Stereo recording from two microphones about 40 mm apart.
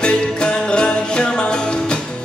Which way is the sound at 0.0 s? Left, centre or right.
Left.